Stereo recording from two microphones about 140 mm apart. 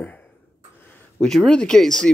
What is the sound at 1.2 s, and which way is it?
Speech, 5° left (ahead or behind).